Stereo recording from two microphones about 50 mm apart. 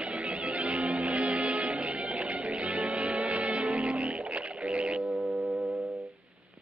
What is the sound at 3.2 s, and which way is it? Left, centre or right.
Music, right.